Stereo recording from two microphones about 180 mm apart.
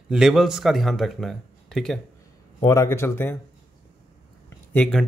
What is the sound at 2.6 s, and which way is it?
Speech, 15° left (ahead or behind).